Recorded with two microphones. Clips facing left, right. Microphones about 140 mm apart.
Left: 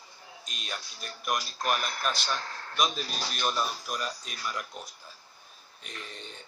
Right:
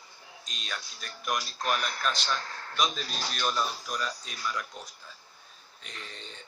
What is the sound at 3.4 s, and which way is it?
Speech, 10° left (ahead or behind).